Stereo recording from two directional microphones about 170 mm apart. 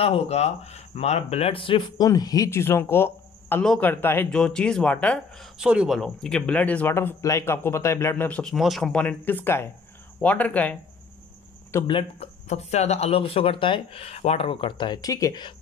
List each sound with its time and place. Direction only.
0.0 s speech: 35° left (ahead or behind); by 10.8 s 10° left (ahead or behind)
11.9 s speech: 35° left (ahead or behind)